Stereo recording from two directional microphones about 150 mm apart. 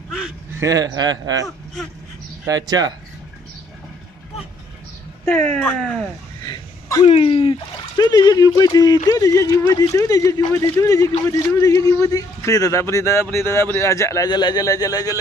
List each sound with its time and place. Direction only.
0.6 s speech: 25° right (ahead or behind)
5.6 s speech: 10° left (ahead or behind)
6.4 s a sound: 30° left (ahead or behind)
7.1 s speech: 40° left (ahead or behind)
8.0 s a man's voice: 25° left (ahead or behind)